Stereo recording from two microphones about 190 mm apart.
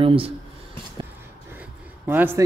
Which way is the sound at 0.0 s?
30° right (ahead or behind).